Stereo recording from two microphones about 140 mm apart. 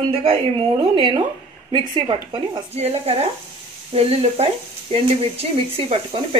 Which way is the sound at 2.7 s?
50° right (ahead or behind).